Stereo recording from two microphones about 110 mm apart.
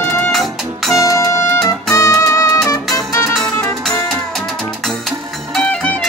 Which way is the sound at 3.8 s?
5° left (ahead or behind).